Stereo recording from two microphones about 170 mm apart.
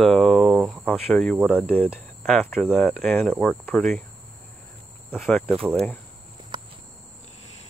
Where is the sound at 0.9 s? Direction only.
Centre (ahead or behind).